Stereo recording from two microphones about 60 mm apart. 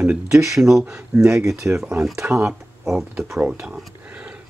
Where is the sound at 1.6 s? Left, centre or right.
Right.